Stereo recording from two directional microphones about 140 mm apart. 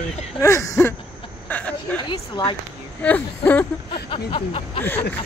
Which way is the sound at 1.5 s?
10° left (ahead or behind).